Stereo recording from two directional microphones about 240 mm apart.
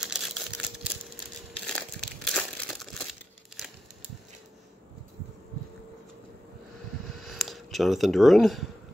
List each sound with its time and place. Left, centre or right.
0.0 s crumpling: centre
7.2 s speech: centre